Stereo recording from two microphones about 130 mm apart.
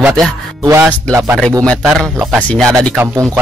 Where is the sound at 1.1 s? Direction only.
20° right (ahead or behind).